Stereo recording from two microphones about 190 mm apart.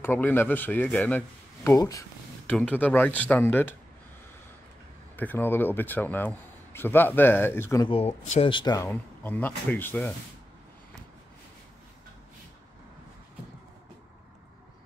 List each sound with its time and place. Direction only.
0.0 s a man's voice: 10° left (ahead or behind)
2.4 s a man's voice: 5° left (ahead or behind)
5.1 s a man's voice: 10° left (ahead or behind)
7.9 s speech: 35° left (ahead or behind)
8.5 s a man's voice: 25° left (ahead or behind)